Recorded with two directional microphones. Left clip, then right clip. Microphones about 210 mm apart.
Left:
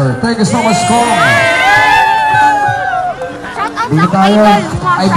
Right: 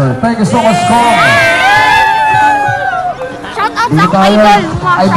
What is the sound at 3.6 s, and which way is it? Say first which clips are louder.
Speech: right 4 dB; 45° right (ahead or behind).